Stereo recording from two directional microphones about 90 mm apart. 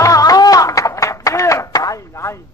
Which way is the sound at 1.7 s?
40° left (ahead or behind).